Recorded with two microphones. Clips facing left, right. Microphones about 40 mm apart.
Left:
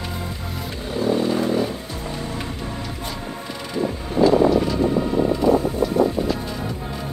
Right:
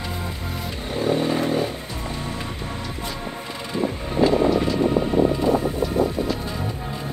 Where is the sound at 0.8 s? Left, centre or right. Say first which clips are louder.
Left 1 dB; right.